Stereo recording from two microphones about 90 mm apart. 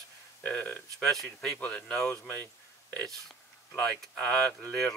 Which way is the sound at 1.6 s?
15° left (ahead or behind).